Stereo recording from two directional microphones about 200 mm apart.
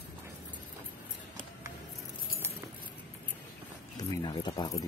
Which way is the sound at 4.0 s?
20° left (ahead or behind).